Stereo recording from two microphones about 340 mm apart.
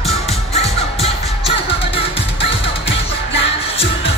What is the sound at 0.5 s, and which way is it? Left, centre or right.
Music, centre.